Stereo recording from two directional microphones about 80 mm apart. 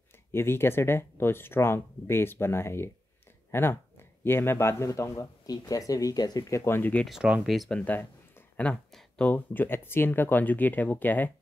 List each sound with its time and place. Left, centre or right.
0.3 s speech: left
6.5 s speech: left
7.1 s speech: centre
7.7 s speech: left
9.2 s speech: left